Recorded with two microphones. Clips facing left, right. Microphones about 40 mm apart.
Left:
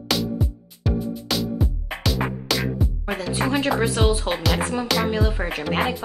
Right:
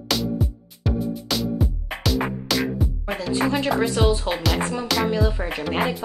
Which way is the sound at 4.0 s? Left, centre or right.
Centre.